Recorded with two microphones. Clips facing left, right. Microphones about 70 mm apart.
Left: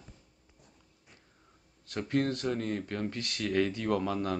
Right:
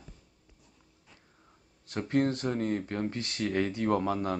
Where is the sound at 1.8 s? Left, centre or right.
Right.